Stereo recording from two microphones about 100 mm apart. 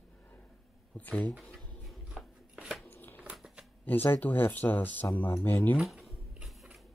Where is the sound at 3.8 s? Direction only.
20° left (ahead or behind).